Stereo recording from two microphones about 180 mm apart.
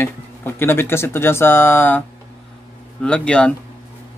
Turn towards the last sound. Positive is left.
turn(degrees=5)  # may be behind; listen again after turning